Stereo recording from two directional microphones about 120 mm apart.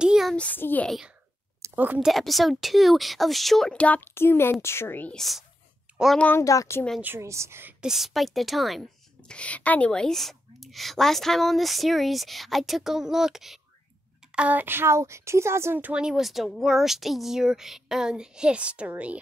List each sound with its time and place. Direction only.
0.0 s a sound: 5° right (ahead or behind)
0.4 s speech: 15° left (ahead or behind)
0.8 s a woman's voice: centre (ahead or behind)
1.6 s a sound: 15° right (ahead or behind)
2.0 s a woman's voice: centre (ahead or behind); by 5.1 s 15° left (ahead or behind)
5.1 s a woman's voice: centre (ahead or behind)
6.1 s speech: 15° left (ahead or behind)
6.4 s speech: 25° left (ahead or behind)
7.0 s a woman's voice: 20° right (ahead or behind)
7.8 s a woman's voice: centre (ahead or behind)
9.3 s a woman's voice: 10° left (ahead or behind); by 19.1 s 10° right (ahead or behind)